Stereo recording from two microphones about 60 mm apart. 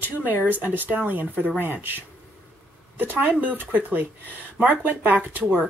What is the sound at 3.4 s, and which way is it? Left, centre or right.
Speech, right.